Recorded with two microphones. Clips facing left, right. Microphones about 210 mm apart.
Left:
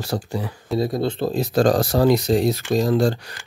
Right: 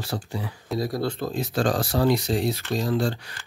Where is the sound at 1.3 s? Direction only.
40° left (ahead or behind).